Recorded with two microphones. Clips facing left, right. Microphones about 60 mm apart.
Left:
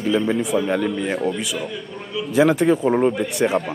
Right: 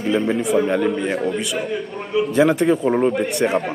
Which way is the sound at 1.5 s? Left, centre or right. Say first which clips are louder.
Right 4 dB; right.